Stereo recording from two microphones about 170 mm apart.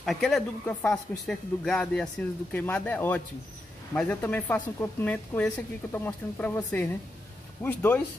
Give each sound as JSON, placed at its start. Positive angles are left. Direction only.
{"t": 0.0, "sound": "a woman's voice", "side_deg": 0}